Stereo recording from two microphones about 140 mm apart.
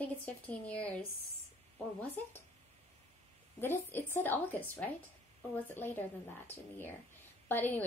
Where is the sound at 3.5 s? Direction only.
15° left (ahead or behind).